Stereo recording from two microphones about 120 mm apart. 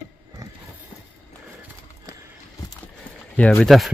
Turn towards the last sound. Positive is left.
turn(degrees=5)  # may be behind; listen again after turning